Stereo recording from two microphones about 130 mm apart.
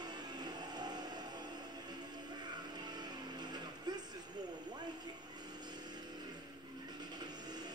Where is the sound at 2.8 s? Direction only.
35° right (ahead or behind).